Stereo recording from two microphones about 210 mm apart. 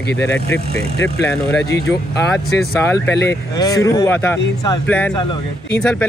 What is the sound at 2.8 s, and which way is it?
Speech, 10° left (ahead or behind).